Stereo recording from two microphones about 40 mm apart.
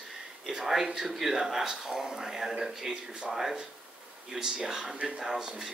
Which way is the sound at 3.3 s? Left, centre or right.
Centre.